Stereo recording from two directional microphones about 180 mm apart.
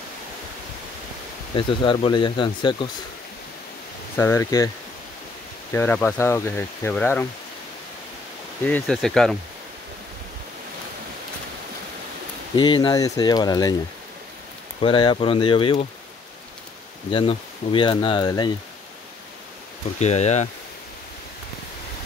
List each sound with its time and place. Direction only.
1.5 s speech: 25° left (ahead or behind)
4.2 s speech: 15° left (ahead or behind)
5.7 s speech: 10° left (ahead or behind)
8.6 s speech: 5° left (ahead or behind)
12.5 s speech: 25° left (ahead or behind)
14.8 s speech: 25° left (ahead or behind)
17.1 s speech: 25° left (ahead or behind)
20.0 s speech: 40° left (ahead or behind)